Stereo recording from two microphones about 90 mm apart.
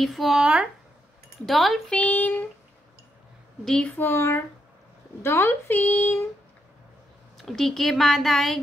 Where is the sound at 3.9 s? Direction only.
25° left (ahead or behind).